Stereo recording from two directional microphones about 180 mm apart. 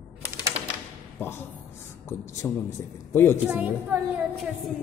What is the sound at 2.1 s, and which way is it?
A man's voice, 15° left (ahead or behind).